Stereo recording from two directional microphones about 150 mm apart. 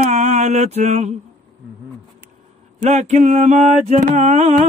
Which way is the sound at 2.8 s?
50° right (ahead or behind).